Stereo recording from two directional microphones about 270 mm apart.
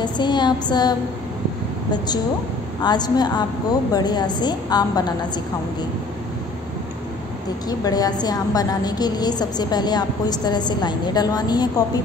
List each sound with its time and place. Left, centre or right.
0.0 s a woman's voice: centre
2.8 s a woman's voice: centre
7.8 s a woman's voice: centre